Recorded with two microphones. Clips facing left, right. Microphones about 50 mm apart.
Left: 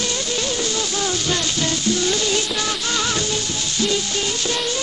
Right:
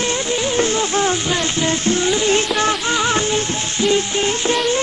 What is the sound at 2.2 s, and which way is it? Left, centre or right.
Music, right.